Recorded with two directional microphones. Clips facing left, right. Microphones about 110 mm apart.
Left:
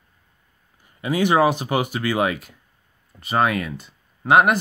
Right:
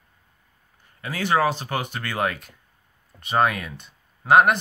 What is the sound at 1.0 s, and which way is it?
Speech, 15° left (ahead or behind).